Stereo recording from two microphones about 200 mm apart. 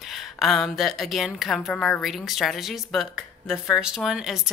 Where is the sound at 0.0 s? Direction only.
Centre (ahead or behind).